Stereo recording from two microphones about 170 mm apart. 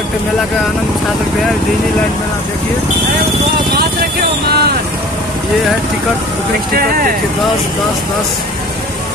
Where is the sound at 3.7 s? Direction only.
65° right (ahead or behind).